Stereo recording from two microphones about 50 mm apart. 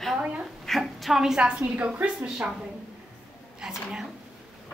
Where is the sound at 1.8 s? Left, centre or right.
Right.